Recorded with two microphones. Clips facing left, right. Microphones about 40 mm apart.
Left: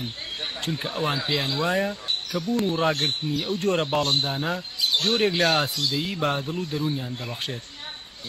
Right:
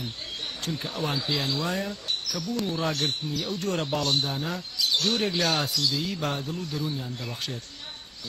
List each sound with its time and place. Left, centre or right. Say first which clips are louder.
0.6 s speech: left 3 dB; left